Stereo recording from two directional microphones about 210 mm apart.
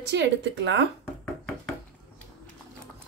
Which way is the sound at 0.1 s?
55° right (ahead or behind).